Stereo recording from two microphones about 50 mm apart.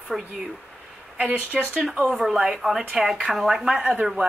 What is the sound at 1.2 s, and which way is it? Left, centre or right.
Speech, right.